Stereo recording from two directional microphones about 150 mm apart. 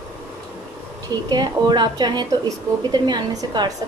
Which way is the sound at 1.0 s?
25° right (ahead or behind).